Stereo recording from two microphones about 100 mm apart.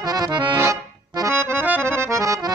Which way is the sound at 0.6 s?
35° right (ahead or behind).